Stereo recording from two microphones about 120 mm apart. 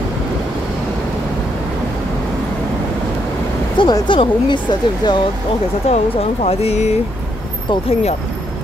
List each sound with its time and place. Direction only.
3.8 s speech: 45° left (ahead or behind)
5.9 s speech: 65° left (ahead or behind)